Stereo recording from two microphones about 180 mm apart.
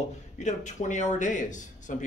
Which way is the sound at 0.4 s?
40° left (ahead or behind).